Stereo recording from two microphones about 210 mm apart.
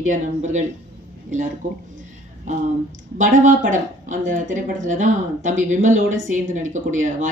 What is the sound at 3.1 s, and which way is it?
Speech, 35° right (ahead or behind).